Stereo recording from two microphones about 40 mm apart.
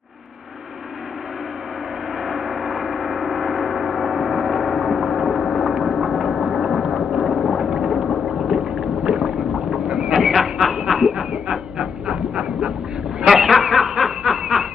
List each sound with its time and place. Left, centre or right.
2.2 s gong: centre
6.5 s boat: centre
7.0 s a sound: centre
7.7 s boat: centre
10.1 s a sound: centre
11.5 s dog: centre
13.3 s snicker: centre